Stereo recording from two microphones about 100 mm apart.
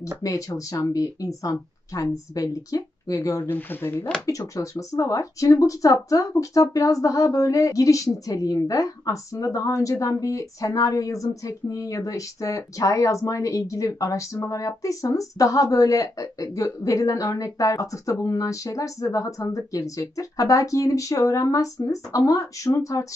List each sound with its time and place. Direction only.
0.2 s speech: 35° left (ahead or behind)
3.4 s speech: 20° left (ahead or behind)
4.3 s speech: 35° left (ahead or behind)